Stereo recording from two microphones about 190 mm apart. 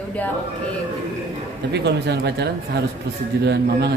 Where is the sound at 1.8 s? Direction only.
60° right (ahead or behind).